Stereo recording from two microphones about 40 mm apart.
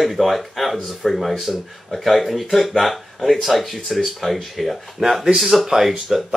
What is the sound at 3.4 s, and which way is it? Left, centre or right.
Speech, centre.